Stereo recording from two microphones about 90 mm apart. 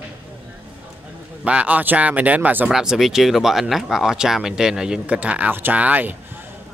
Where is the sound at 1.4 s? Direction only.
15° right (ahead or behind).